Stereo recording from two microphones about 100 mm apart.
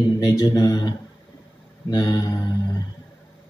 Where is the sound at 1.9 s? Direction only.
40° left (ahead or behind).